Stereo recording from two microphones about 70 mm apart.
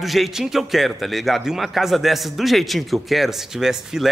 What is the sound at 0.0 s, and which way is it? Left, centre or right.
A man's voice, centre.